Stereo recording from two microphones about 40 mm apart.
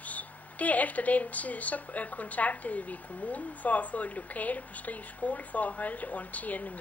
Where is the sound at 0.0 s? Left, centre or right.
Left.